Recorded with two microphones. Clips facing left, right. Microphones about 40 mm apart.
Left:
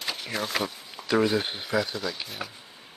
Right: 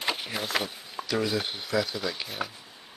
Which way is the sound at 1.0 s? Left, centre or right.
Left.